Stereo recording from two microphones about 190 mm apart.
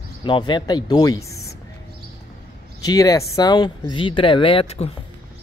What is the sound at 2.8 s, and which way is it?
Speech, 20° left (ahead or behind).